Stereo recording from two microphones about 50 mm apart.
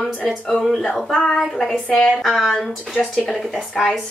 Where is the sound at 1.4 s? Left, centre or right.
Centre.